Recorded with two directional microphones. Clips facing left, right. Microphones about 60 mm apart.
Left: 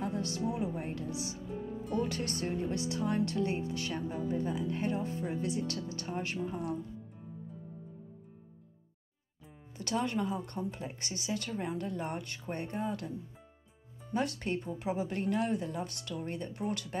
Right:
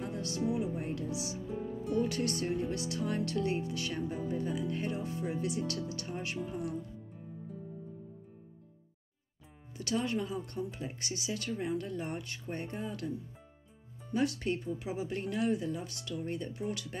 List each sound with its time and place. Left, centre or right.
0.0 s speech: left
9.8 s speech: left
14.1 s speech: left